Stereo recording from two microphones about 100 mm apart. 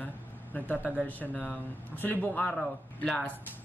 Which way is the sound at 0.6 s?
20° left (ahead or behind).